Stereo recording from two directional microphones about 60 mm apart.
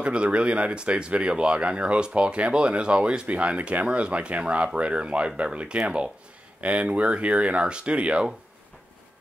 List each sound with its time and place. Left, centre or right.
0.0 s speech: centre